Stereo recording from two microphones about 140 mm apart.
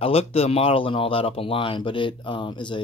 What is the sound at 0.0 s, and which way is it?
Speech, 45° left (ahead or behind).